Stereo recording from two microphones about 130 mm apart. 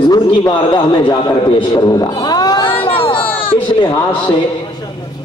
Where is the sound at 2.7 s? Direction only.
45° left (ahead or behind).